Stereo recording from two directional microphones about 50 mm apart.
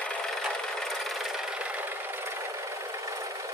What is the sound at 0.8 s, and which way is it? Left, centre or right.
Engine, centre.